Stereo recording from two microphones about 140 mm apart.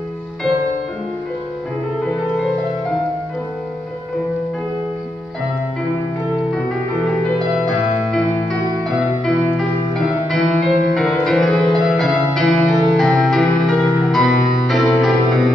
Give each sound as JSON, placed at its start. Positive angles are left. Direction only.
{"t": 7.5, "sound": "music", "side_deg": 5}